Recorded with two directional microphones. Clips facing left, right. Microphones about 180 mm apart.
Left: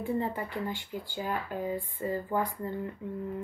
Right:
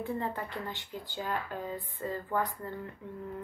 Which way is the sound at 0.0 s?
10° left (ahead or behind).